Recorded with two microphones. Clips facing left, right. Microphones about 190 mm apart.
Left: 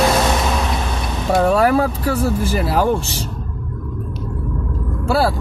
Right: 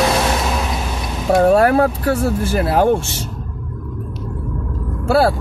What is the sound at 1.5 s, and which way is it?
Speech, 55° right (ahead or behind).